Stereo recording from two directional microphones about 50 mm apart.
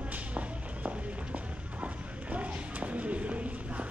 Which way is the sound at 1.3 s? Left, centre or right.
Right.